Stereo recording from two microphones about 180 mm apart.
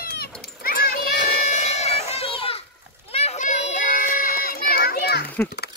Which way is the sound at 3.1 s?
35° left (ahead or behind).